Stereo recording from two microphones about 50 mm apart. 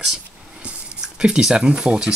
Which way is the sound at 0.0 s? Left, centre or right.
Centre.